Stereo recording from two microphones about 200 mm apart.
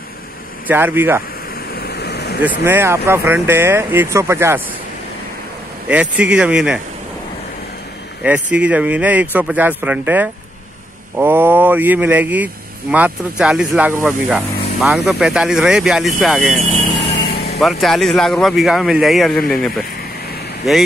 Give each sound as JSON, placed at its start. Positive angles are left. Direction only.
{"t": 0.7, "sound": "speech", "side_deg": -10}
{"t": 1.7, "sound": "waterfall", "side_deg": 55}
{"t": 2.6, "sound": "speech", "side_deg": -10}
{"t": 5.9, "sound": "speech", "side_deg": -5}
{"t": 8.2, "sound": "speech", "side_deg": -5}
{"t": 17.2, "sound": "vehicle", "side_deg": 55}
{"t": 17.6, "sound": "speech", "side_deg": 0}